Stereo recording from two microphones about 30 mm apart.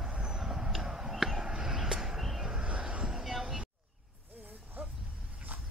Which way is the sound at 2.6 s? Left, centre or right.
Right.